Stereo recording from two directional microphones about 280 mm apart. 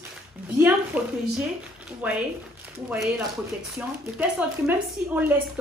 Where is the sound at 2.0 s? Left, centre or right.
Centre.